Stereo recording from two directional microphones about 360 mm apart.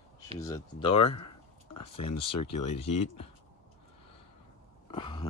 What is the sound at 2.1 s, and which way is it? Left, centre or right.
Speech, centre.